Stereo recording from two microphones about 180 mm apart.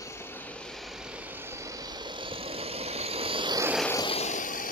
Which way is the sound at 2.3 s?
30° right (ahead or behind).